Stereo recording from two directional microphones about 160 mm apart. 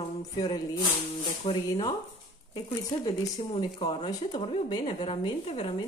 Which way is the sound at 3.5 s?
35° left (ahead or behind).